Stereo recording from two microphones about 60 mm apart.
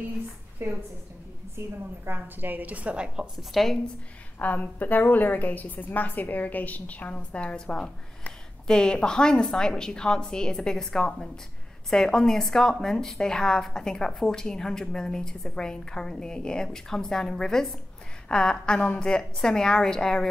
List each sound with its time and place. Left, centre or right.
0.6 s a woman's voice: right
2.0 s a woman's voice: right
3.5 s a woman's voice: centre
4.4 s a woman's voice: left; by 20.2 s centre